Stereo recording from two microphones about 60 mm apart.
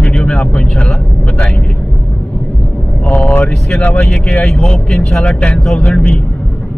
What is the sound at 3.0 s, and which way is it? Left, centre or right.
Speech, left.